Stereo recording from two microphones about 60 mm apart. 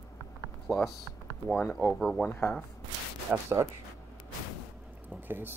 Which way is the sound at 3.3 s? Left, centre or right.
Centre.